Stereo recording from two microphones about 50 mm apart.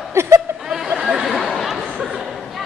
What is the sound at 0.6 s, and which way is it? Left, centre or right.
Chatter, centre.